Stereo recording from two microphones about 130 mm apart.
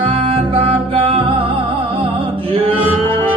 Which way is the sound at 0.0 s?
45° right (ahead or behind).